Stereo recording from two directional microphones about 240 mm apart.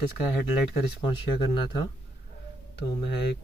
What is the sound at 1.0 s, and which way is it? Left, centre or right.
Speech, centre.